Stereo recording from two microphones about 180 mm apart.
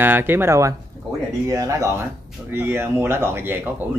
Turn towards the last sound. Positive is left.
turn(degrees=-10)  # may be behind; listen again after turning